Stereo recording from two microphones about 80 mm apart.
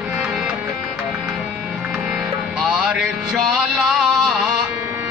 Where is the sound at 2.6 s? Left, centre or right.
Centre.